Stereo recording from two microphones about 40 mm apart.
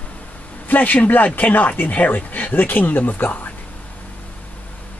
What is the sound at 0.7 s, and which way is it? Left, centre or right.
Speech, left.